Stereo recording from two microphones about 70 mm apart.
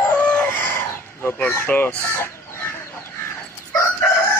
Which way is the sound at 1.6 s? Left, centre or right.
Left.